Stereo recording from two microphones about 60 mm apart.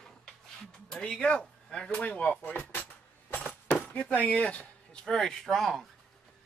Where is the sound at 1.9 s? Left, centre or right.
Left.